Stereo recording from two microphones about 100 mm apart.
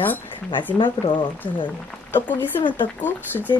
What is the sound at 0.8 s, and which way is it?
Speech, 50° left (ahead or behind).